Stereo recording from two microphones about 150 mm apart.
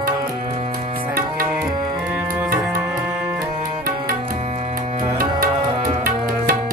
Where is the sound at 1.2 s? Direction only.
20° right (ahead or behind).